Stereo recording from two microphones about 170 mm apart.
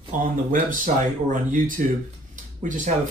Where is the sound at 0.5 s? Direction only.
50° right (ahead or behind).